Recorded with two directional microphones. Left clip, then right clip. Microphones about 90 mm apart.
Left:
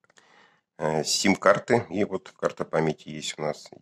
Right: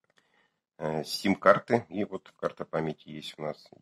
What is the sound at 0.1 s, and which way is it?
Speech, 30° left (ahead or behind).